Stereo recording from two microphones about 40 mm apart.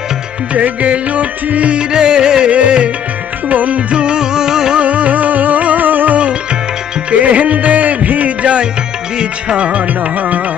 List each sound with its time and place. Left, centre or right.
0.6 s music: right
1.8 s music: right
2.5 s music: right
3.9 s music: right
4.7 s music: right